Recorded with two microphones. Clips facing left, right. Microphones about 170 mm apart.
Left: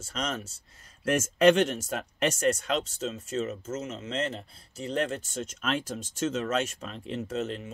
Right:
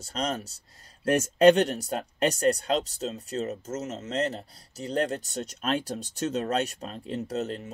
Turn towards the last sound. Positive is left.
turn(degrees=-40)  # may be behind; listen again after turning